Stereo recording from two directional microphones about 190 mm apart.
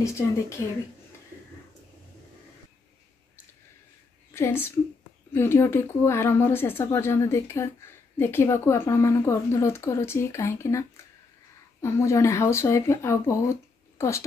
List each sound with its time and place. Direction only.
4.3 s a woman's voice: 10° left (ahead or behind)